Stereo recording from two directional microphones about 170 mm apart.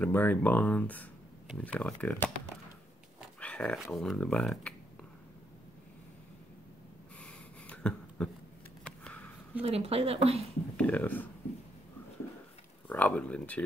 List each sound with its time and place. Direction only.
0.0 s speech: 10° left (ahead or behind)
3.3 s speech: 5° left (ahead or behind)
7.2 s a sound: 5° left (ahead or behind)
9.6 s speech: 35° right (ahead or behind)
10.8 s speech: 10° left (ahead or behind)
12.8 s speech: 10° left (ahead or behind)